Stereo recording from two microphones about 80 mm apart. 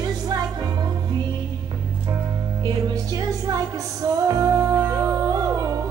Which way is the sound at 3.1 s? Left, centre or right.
Right.